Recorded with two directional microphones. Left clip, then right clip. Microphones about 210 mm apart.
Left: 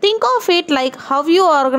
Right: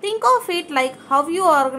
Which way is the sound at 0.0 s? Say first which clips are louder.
Left 3 dB; 40° left (ahead or behind).